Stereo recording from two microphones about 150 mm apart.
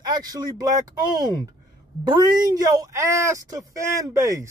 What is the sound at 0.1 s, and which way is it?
Speech, 25° right (ahead or behind).